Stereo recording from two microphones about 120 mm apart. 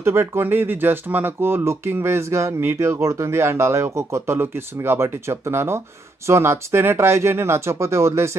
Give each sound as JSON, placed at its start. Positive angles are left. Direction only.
{"t": 0.0, "sound": "speech", "side_deg": -20}